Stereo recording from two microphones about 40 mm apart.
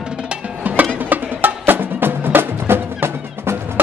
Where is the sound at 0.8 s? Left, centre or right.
Right.